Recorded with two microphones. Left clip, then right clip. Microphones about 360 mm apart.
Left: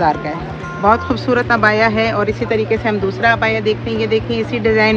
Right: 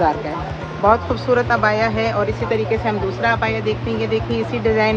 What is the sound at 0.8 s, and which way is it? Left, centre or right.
Speech, left.